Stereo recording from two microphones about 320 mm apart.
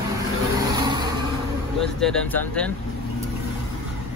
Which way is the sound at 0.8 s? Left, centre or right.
Centre.